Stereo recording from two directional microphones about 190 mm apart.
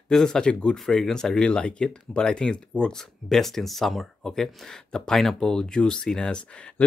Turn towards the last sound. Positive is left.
turn(degrees=5)  # may be behind; listen again after turning